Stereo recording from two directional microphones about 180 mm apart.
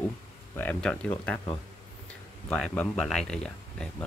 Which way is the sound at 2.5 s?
5° left (ahead or behind).